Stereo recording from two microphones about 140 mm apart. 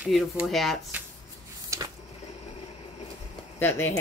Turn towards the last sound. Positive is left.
turn(degrees=15)  # may be behind; listen again after turning